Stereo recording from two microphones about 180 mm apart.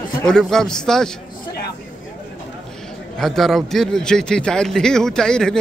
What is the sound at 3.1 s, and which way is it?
A man's voice, centre (ahead or behind).